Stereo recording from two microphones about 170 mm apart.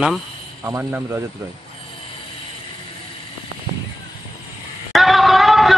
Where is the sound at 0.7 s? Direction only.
15° right (ahead or behind).